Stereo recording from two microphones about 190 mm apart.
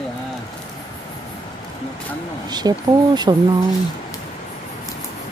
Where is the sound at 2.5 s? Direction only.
20° right (ahead or behind).